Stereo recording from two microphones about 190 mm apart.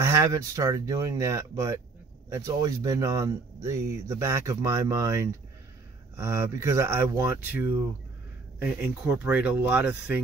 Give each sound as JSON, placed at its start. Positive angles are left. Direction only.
{"t": 0.0, "sound": "speech", "side_deg": -15}